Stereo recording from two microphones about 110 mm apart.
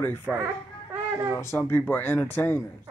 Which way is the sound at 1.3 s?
20° left (ahead or behind).